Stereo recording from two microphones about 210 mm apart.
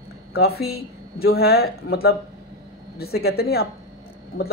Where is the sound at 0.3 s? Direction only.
50° left (ahead or behind).